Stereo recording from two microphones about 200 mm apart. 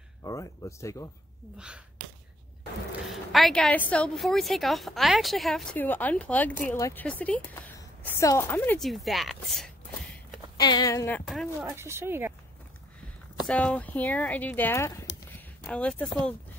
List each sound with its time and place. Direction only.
0.2 s a woman's voice: 15° left (ahead or behind)
3.3 s a woman's voice: centre (ahead or behind)
10.6 s a woman's voice: 20° left (ahead or behind); by 11.4 s 5° left (ahead or behind)
11.6 s speech: 10° right (ahead or behind)
13.5 s a woman's voice: 5° left (ahead or behind)